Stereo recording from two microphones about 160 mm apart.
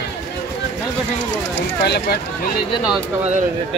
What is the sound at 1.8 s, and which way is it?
Speech, 90° left.